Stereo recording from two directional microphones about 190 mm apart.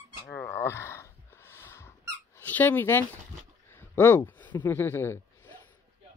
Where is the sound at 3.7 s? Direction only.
15° left (ahead or behind).